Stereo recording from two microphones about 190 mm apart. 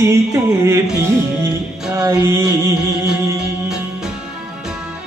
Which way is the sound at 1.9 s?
15° right (ahead or behind).